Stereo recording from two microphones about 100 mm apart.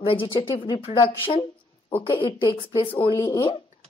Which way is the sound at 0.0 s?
60° left (ahead or behind).